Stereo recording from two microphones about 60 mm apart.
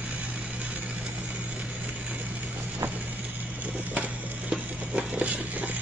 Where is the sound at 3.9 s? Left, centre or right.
Centre.